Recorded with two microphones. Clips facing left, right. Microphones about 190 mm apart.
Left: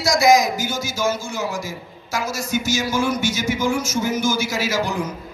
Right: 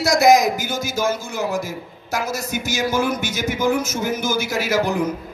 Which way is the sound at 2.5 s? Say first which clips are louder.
Left 1 dB; 55° right (ahead or behind).